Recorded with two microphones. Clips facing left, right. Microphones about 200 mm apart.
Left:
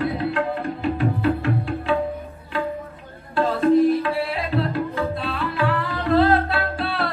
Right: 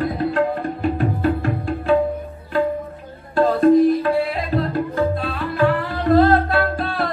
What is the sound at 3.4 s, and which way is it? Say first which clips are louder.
Tabla: right 4 dB; 40° right (ahead or behind).